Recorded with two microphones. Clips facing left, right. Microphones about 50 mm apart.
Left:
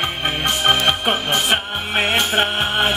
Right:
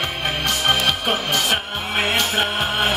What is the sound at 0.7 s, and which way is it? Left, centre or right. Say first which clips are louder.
Music: left 3 dB; left.